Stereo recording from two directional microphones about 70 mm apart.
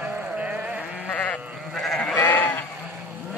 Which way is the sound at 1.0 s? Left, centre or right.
Left.